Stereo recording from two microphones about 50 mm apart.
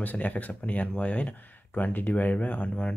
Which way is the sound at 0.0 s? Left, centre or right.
Left.